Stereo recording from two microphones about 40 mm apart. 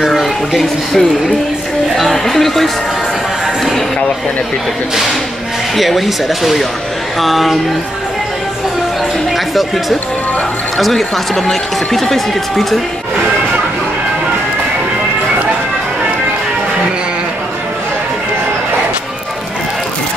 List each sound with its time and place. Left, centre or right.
0.1 s a sound: centre
2.0 s speech: centre
5.8 s speech: centre
10.8 s speech: centre